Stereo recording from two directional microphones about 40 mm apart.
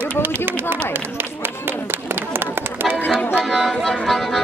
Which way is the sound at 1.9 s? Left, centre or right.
Right.